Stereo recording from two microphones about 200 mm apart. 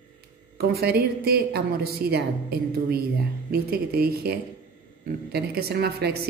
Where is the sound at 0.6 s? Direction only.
50° right (ahead or behind).